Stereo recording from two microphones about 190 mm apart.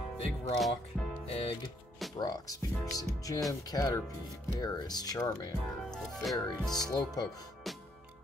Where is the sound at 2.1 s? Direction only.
20° left (ahead or behind).